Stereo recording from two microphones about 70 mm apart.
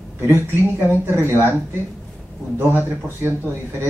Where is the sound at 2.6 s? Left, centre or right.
Right.